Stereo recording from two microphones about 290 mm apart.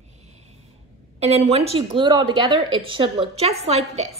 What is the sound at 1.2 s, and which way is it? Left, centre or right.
A woman's voice, right.